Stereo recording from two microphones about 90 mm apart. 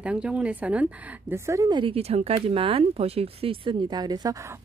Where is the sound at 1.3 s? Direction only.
35° right (ahead or behind).